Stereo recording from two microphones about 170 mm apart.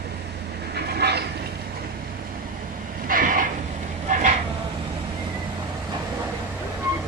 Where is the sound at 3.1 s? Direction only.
55° right (ahead or behind).